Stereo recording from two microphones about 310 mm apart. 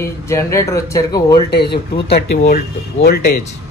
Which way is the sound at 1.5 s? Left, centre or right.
Left.